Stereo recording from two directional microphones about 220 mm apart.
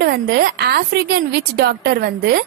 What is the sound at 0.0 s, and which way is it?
A woman's voice, 50° right (ahead or behind).